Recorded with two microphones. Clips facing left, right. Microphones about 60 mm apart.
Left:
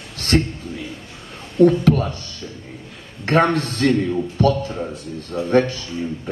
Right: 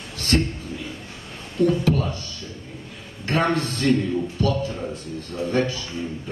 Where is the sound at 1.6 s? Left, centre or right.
Left.